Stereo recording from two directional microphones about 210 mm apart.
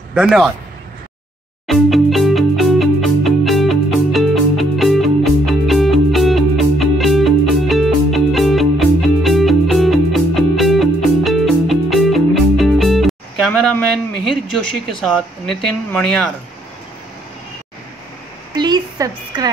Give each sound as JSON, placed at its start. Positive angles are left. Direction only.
{"t": 0.1, "sound": "speech", "side_deg": -5}
{"t": 1.7, "sound": "music", "side_deg": 0}
{"t": 15.0, "sound": "speech", "side_deg": 0}
{"t": 18.5, "sound": "a sound", "side_deg": -20}